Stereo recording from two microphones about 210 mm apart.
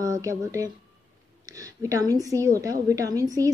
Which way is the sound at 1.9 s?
15° right (ahead or behind).